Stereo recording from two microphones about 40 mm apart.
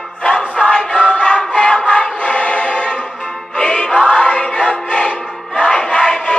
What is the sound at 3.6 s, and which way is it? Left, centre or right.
Music, left.